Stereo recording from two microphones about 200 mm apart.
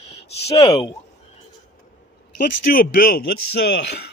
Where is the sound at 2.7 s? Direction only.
45° left (ahead or behind).